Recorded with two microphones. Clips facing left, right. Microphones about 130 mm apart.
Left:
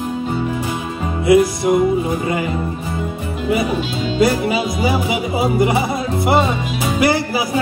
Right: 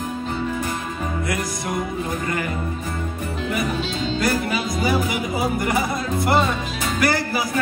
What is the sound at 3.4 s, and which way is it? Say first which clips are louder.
Music: left 7 dB; 5° left (ahead or behind).